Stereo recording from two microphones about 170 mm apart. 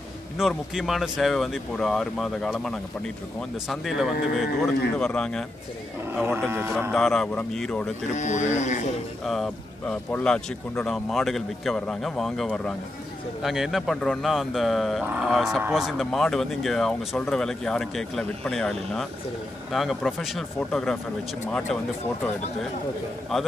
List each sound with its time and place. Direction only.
0.4 s speech: centre (ahead or behind)
6.1 s speech: 10° right (ahead or behind)
6.9 s speech: 5° left (ahead or behind)
8.1 s speech: 45° left (ahead or behind)
9.2 s speech: centre (ahead or behind)
23.3 s speech: centre (ahead or behind)